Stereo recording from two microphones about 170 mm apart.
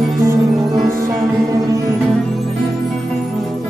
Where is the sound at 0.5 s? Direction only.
Centre (ahead or behind).